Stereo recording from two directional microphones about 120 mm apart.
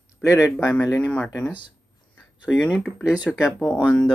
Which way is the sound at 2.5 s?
10° left (ahead or behind).